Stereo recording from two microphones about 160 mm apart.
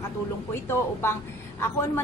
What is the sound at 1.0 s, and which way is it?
Speech, 15° left (ahead or behind).